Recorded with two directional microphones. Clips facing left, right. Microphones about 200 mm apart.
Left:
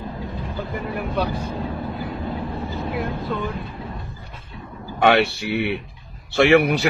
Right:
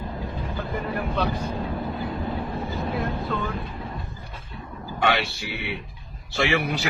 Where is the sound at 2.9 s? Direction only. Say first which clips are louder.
Left 2 dB; 15° left (ahead or behind).